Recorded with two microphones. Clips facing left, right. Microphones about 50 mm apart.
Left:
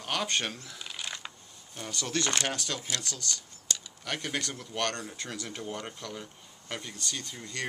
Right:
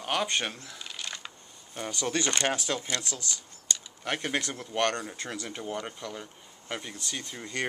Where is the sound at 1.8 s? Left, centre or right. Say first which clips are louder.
Right 3 dB; centre.